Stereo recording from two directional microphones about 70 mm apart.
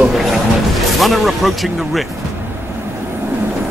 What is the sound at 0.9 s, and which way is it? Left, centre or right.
Speech, centre.